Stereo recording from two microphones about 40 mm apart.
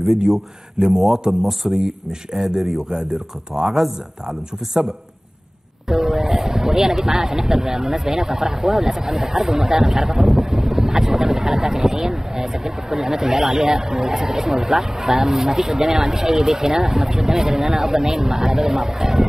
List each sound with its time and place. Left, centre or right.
0.2 s speech: centre
1.7 s speech: centre
5.9 s speech: centre